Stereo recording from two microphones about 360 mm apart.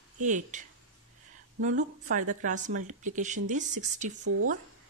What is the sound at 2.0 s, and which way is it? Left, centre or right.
A woman's voice, right.